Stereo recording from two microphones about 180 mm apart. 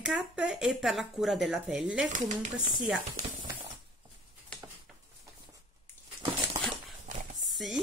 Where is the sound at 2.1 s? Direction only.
45° right (ahead or behind).